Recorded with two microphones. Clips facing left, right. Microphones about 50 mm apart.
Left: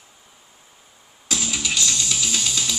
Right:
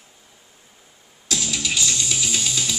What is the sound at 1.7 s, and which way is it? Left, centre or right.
Music, centre.